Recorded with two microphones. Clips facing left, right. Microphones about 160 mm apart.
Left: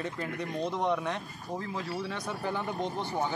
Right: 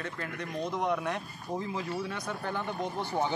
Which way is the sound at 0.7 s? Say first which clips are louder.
Right 1 dB; centre (ahead or behind).